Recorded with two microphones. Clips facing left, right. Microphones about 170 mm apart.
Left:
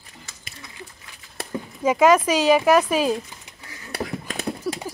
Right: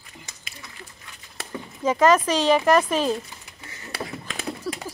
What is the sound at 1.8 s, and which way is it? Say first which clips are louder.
Speech: left 2 dB; 10° left (ahead or behind).